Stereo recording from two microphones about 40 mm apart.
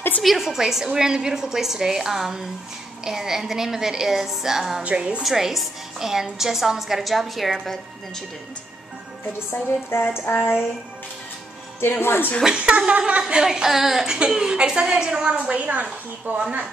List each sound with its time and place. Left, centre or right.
0.2 s a woman's voice: centre
4.8 s a woman's voice: right
5.2 s a woman's voice: centre
9.5 s a woman's voice: left
10.2 s a sound: left
12.0 s speech: left
12.5 s a woman's voice: right; by 14.0 s centre
14.0 s a woman's voice: centre
15.6 s a woman's voice: right